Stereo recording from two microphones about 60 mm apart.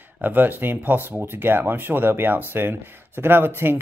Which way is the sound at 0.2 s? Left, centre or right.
Right.